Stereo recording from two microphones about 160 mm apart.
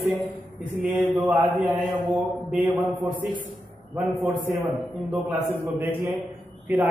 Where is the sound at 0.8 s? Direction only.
5° right (ahead or behind).